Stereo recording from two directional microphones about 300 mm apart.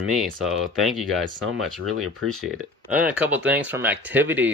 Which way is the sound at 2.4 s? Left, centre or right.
Centre.